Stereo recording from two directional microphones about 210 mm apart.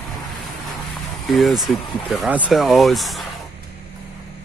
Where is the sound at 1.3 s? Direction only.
Centre (ahead or behind).